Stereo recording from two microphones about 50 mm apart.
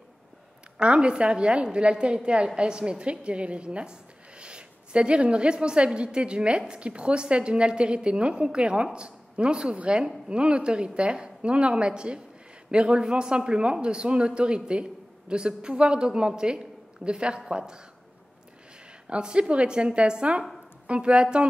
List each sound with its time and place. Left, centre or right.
0.7 s a man's voice: centre
19.0 s a man's voice: centre